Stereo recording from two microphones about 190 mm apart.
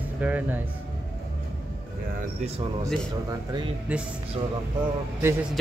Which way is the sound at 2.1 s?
35° right (ahead or behind).